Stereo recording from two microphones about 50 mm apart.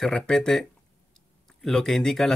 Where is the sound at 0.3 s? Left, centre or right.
Centre.